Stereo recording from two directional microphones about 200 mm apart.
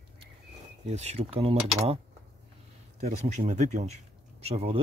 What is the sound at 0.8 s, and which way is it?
Speech, 35° right (ahead or behind).